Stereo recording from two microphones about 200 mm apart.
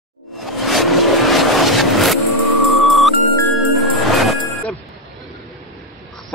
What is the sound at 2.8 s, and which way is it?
Music, centre (ahead or behind).